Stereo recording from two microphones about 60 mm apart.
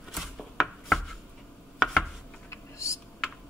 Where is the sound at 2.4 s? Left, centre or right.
Left.